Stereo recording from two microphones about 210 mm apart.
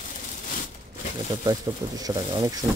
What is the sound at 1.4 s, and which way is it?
Speech, 15° right (ahead or behind).